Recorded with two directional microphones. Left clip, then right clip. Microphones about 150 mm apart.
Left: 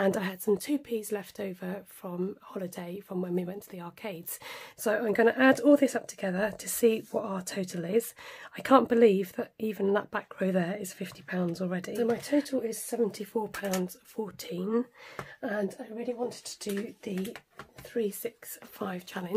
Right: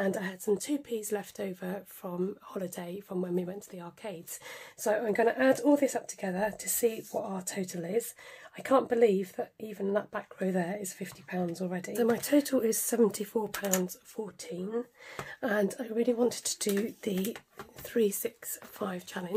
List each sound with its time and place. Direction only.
0.0 s a woman's voice: 35° left (ahead or behind)
11.9 s speech: 5° right (ahead or behind)
12.4 s speech: 30° right (ahead or behind)
13.1 s speech: 10° right (ahead or behind)
13.6 s speech: 5° left (ahead or behind)
14.1 s speech: 25° left (ahead or behind)
15.8 s speech: 50° right (ahead or behind)
17.9 s speech: 25° right (ahead or behind)
18.8 s speech: 10° left (ahead or behind)